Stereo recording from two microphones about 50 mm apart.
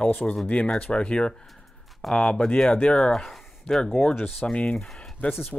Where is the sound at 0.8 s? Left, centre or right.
Left.